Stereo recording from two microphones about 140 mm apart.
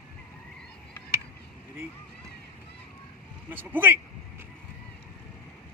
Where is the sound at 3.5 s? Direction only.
15° right (ahead or behind).